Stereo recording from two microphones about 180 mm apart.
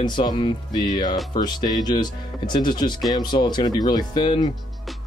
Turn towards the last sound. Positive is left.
turn(degrees=25)  # may be behind; listen again after turning